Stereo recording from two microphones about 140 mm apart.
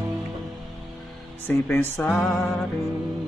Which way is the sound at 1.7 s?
15° left (ahead or behind).